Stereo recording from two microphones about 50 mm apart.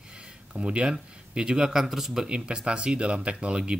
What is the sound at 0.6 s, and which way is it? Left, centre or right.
Speech, centre.